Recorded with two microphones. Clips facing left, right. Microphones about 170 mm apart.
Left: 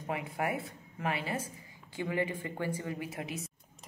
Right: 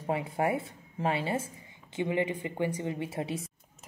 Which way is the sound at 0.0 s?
30° right (ahead or behind).